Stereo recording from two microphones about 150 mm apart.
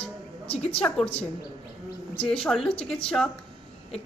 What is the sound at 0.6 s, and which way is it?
Speech, 40° left (ahead or behind).